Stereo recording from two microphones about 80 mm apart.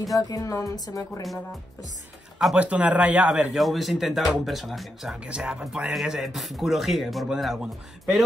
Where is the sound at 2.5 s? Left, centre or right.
Centre.